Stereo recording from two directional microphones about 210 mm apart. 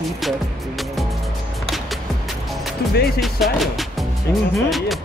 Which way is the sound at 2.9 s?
50° left (ahead or behind).